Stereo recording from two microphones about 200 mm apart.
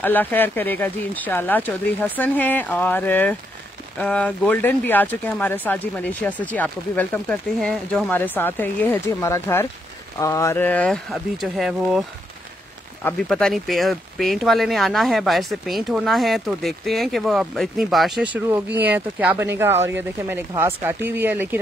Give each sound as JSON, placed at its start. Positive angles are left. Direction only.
{"t": 0.0, "sound": "speech", "side_deg": 10}
{"t": 13.0, "sound": "speech", "side_deg": 0}